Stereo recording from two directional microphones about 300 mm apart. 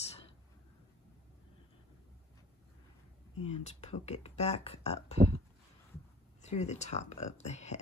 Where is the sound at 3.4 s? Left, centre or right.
Left.